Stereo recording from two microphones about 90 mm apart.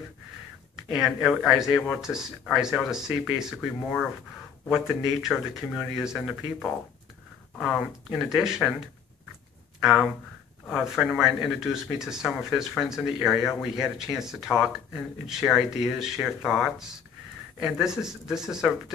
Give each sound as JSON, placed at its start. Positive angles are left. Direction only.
{"t": 0.7, "sound": "speech", "side_deg": -5}
{"t": 9.8, "sound": "speech", "side_deg": -5}